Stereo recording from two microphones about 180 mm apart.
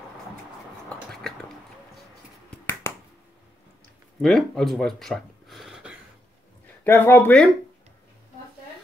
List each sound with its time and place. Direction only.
0.8 s a sound: 5° left (ahead or behind)
2.5 s finger snapping: 10° left (ahead or behind)
4.2 s speech: centre (ahead or behind)
6.8 s speech: 10° left (ahead or behind)